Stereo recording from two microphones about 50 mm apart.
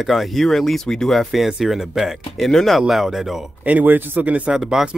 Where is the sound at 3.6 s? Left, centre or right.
Right.